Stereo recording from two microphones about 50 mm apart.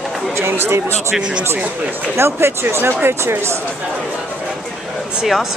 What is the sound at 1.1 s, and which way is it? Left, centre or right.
Speech, centre.